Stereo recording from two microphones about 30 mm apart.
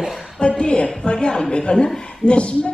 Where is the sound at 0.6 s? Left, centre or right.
Left.